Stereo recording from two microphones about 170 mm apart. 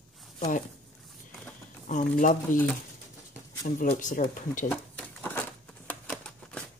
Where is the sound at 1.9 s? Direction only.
50° left (ahead or behind).